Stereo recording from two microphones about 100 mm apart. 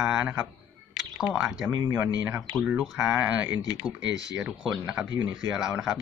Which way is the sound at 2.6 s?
5° right (ahead or behind).